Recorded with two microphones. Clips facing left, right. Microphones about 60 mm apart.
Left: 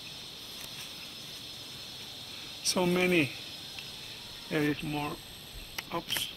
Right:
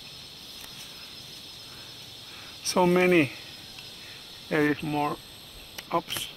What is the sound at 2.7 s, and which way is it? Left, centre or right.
Speech, right.